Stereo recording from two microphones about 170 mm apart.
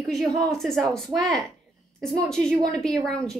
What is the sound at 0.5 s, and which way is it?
A woman's voice, centre (ahead or behind).